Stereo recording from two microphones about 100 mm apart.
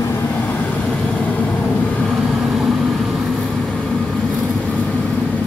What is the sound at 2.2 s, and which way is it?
Vehicle, centre (ahead or behind).